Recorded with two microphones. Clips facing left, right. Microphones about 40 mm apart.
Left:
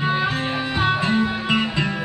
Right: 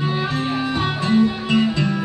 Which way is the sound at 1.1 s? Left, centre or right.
Centre.